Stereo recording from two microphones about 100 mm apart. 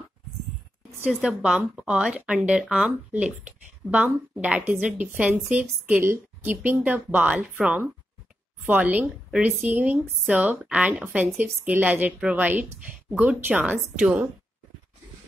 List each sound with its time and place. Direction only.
1.0 s speech: 5° right (ahead or behind)